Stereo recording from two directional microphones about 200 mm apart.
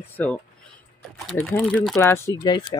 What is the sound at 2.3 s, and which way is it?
Speech, 20° left (ahead or behind).